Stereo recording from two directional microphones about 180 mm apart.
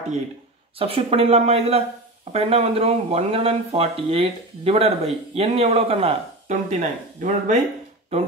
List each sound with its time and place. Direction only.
0.7 s speech: 30° right (ahead or behind)